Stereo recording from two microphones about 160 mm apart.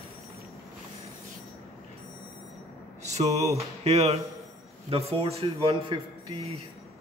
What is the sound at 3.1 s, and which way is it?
A man's voice, 45° right (ahead or behind).